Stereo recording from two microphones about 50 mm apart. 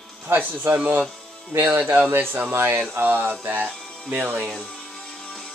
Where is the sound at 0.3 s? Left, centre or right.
Right.